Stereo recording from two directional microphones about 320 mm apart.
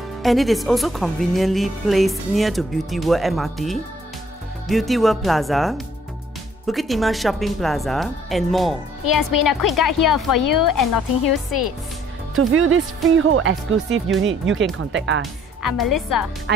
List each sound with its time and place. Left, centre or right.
0.2 s a woman's voice: centre
9.0 s a woman's voice: left
11.0 s a woman's voice: left
12.5 s speech: right
15.9 s a woman's voice: left
16.5 s speech: right